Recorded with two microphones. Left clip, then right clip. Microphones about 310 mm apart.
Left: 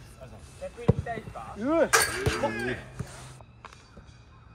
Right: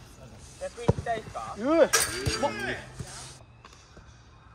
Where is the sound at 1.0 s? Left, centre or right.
Right.